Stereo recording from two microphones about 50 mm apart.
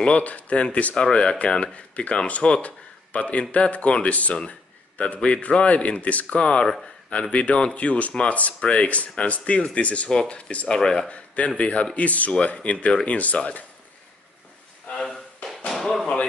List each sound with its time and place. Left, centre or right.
0.0 s speech: left
11.1 s speech: left
14.9 s a sound: centre
15.7 s speech: centre